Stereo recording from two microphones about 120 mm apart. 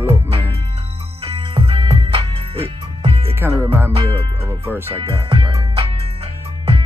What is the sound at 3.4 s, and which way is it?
Music, 20° right (ahead or behind).